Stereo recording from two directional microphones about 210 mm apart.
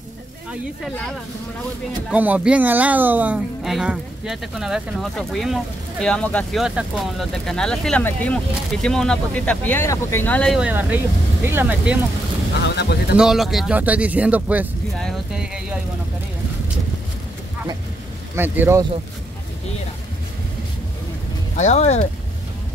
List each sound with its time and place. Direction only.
2.0 s speech: 5° right (ahead or behind)
12.6 s speech: 55° left (ahead or behind)
13.1 s speech: centre (ahead or behind)
18.3 s speech: 10° right (ahead or behind)
21.5 s speech: 30° left (ahead or behind)